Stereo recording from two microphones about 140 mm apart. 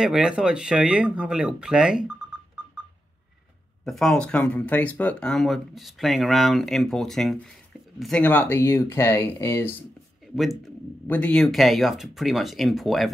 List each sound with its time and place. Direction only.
0.0 s speech: 5° right (ahead or behind)
3.8 s speech: 5° left (ahead or behind)
10.3 s speech: centre (ahead or behind)
11.1 s speech: 10° left (ahead or behind)